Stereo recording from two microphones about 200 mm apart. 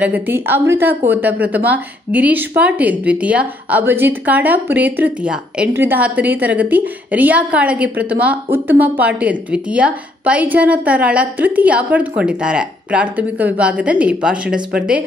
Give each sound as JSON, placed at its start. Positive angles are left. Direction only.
{"t": 0.0, "sound": "a woman's voice", "side_deg": -10}